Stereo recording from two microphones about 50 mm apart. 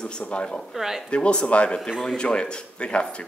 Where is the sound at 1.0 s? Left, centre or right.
Left.